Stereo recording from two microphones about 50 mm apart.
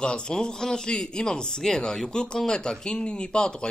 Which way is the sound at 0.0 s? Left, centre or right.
Centre.